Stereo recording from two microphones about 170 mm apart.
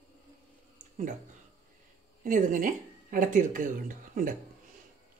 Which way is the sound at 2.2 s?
50° right (ahead or behind).